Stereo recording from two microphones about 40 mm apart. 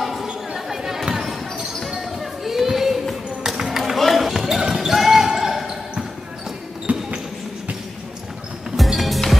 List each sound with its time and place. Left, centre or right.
0.0 s chatter: centre
0.5 s basketball bounce: centre
3.5 s run: centre
3.9 s basketball bounce: centre
6.9 s basketball bounce: right
8.7 s music: centre